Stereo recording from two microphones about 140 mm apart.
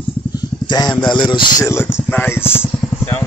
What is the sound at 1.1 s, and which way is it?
Speech, 35° left (ahead or behind).